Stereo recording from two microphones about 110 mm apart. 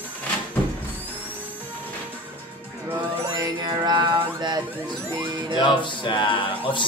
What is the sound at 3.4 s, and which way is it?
Music, 40° right (ahead or behind).